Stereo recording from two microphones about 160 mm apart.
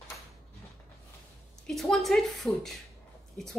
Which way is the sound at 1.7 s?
Centre (ahead or behind).